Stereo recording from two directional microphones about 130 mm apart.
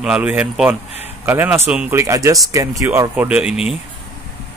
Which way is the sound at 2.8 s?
10° right (ahead or behind).